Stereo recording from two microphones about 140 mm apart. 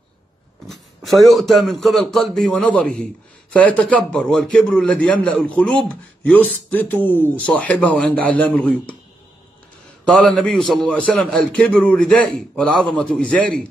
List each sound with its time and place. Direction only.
0.7 s a man's voice: centre (ahead or behind)
10.0 s a man's voice: 10° left (ahead or behind)